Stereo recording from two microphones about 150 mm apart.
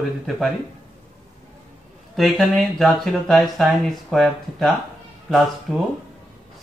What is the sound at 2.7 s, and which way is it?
Speech, centre (ahead or behind).